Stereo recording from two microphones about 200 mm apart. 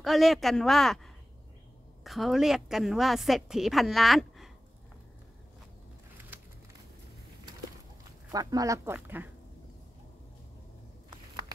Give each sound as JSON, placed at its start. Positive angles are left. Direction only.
{"t": 0.0, "sound": "a woman's voice", "side_deg": 0}
{"t": 8.3, "sound": "speech", "side_deg": -20}